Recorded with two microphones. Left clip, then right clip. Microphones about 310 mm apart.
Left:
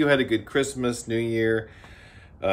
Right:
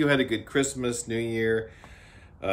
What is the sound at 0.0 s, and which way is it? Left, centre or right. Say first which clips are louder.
Speech: left 3 dB; centre.